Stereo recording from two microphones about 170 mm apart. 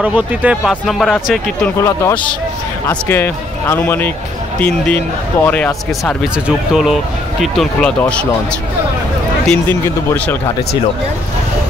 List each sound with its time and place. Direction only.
0.0 s speech: 10° right (ahead or behind)
1.8 s speech: 15° left (ahead or behind)
6.2 s speech: 5° right (ahead or behind)
9.5 s speech: 10° left (ahead or behind)